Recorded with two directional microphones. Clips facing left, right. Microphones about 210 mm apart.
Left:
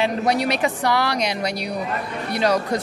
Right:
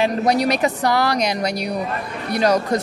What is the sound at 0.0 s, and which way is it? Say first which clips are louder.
Speech: right 3 dB; 40° right (ahead or behind).